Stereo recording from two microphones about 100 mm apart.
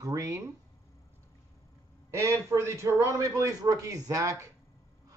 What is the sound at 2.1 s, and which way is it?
A man's voice, 30° right (ahead or behind).